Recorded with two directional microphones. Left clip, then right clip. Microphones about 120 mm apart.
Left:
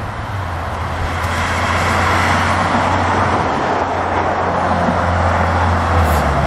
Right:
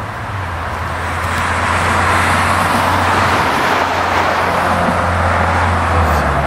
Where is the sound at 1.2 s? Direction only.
Centre (ahead or behind).